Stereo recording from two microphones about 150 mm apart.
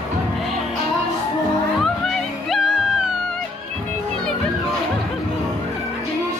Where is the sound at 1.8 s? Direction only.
Centre (ahead or behind).